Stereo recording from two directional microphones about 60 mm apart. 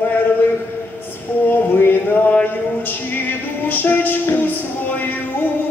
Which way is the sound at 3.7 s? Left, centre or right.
Left.